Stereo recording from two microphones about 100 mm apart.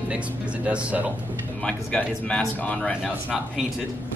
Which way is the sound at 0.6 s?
15° right (ahead or behind).